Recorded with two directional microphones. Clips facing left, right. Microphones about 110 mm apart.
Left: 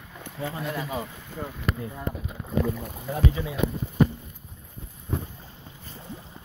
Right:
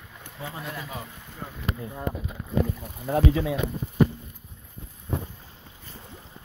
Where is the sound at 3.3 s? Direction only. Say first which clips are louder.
Right 2 dB; 90° right.